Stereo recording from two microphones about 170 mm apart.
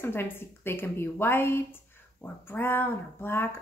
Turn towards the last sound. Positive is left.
turn(degrees=15)  # may be behind; listen again after turning